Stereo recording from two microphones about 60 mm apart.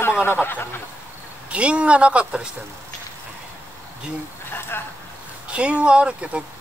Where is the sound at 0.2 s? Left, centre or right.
Left.